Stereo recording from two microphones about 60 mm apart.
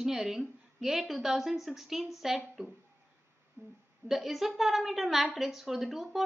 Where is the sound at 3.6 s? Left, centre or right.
Right.